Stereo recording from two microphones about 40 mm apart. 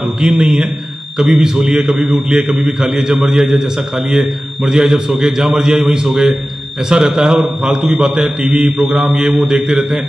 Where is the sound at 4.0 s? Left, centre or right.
Centre.